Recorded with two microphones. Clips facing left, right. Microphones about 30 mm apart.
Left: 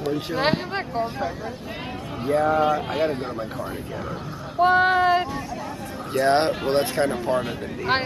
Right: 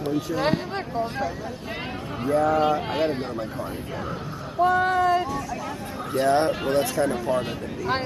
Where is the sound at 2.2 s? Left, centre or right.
Left.